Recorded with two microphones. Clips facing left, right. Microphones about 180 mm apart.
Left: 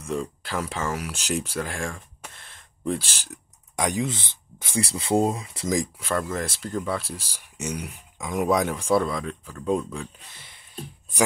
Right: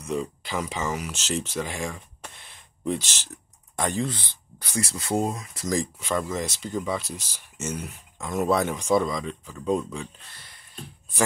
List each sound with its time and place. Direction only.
0.0 s speech: centre (ahead or behind)
0.9 s speech: 10° left (ahead or behind)
3.7 s speech: 15° left (ahead or behind)
4.7 s speech: 30° left (ahead or behind)
5.9 s speech: 5° right (ahead or behind)